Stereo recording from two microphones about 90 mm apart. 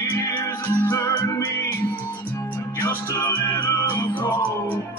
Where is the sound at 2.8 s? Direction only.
30° left (ahead or behind).